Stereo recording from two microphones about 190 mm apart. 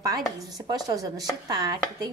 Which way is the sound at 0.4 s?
20° right (ahead or behind).